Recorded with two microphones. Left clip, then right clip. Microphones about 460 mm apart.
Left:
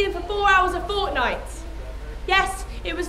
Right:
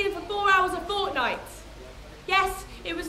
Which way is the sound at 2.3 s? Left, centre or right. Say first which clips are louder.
Left 3 dB; left.